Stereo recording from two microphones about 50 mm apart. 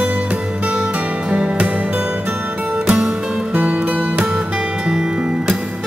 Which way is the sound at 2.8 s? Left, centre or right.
Right.